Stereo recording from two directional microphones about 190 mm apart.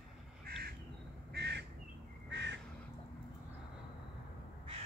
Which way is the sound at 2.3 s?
65° right (ahead or behind).